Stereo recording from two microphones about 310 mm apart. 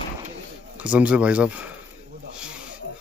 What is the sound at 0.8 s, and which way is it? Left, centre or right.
Speech, centre.